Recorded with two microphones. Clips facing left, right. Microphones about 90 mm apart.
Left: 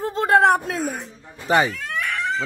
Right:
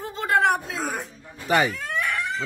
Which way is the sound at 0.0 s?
35° left (ahead or behind).